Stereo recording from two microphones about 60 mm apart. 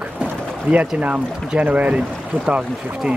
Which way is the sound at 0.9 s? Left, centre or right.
Right.